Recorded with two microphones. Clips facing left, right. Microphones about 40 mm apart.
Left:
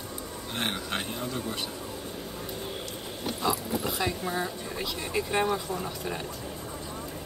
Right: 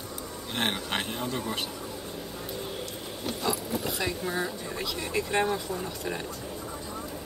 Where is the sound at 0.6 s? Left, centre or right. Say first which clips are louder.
Right 2 dB; right.